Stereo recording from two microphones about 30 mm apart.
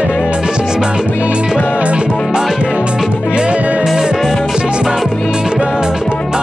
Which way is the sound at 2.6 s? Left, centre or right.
Right.